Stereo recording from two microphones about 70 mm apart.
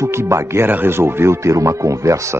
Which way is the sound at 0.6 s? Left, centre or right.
Right.